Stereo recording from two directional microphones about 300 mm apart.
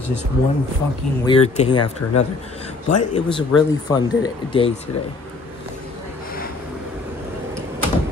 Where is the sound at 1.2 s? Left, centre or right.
Centre.